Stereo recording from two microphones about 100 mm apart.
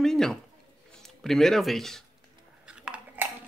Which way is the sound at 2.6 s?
10° right (ahead or behind).